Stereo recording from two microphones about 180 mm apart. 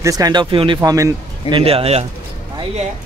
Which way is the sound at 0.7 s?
15° right (ahead or behind).